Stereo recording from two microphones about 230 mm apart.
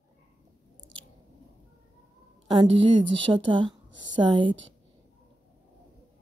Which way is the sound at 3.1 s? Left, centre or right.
Right.